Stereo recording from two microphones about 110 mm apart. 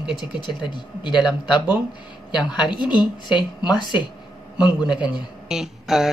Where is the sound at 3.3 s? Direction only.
40° left (ahead or behind).